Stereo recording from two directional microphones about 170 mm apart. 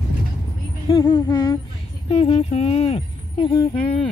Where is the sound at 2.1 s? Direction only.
35° left (ahead or behind).